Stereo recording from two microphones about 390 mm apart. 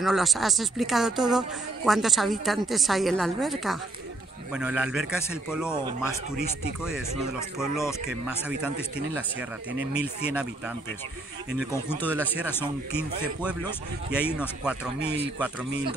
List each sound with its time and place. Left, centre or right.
0.0 s a man's voice: centre
7.3 s speech: centre
8.3 s a man's voice: centre
11.7 s a man's voice: centre
15.0 s speech: right